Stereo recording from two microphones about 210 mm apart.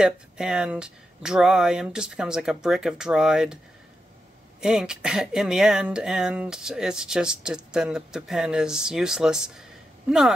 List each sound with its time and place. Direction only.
0.0 s speech: 5° right (ahead or behind)
4.6 s speech: 5° right (ahead or behind)